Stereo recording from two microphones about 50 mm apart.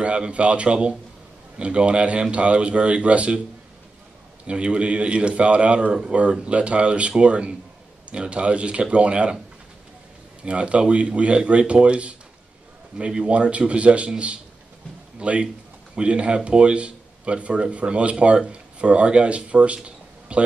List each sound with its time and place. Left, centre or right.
0.0 s speech: right
4.5 s speech: right
10.4 s speech: right